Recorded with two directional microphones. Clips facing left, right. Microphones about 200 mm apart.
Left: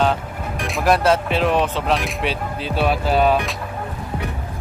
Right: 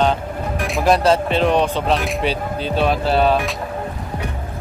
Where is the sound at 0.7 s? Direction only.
Centre (ahead or behind).